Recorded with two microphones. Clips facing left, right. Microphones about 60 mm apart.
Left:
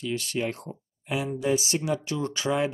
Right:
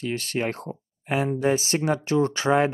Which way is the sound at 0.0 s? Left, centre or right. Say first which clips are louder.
Right 2 dB; right.